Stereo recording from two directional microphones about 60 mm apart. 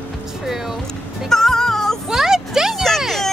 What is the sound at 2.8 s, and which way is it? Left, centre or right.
Music, centre.